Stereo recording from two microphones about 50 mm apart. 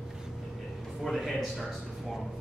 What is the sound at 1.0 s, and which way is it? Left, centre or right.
Speech, centre.